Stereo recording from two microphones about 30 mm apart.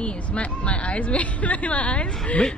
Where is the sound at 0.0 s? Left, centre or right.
Left.